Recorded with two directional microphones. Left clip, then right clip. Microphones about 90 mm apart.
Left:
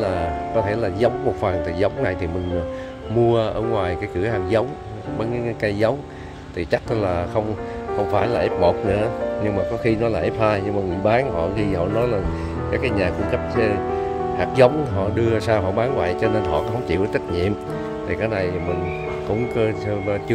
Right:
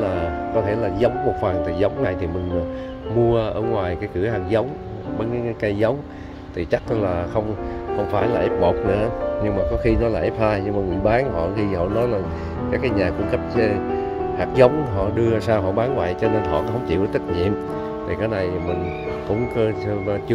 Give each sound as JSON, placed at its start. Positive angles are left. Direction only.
{"t": 0.0, "sound": "speech", "side_deg": 20}
{"t": 3.2, "sound": "speech", "side_deg": 30}
{"t": 19.5, "sound": "speech", "side_deg": 20}